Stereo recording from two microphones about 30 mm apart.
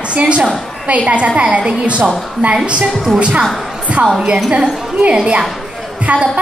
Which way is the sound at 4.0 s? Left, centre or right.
Right.